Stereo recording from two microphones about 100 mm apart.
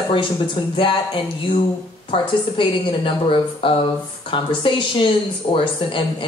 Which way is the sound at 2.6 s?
55° left (ahead or behind).